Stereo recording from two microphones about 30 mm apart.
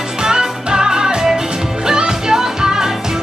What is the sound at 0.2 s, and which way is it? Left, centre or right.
Music, right.